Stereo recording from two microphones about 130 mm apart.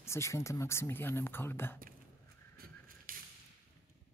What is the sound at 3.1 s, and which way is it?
Whip, 90° right.